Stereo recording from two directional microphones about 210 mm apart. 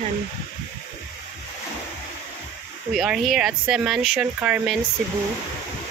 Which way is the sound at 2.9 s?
Centre (ahead or behind).